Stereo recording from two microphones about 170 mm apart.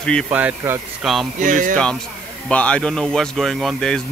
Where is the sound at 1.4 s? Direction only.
50° right (ahead or behind).